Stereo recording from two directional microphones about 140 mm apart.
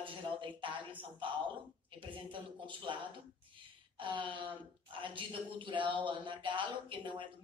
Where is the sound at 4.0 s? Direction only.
35° right (ahead or behind).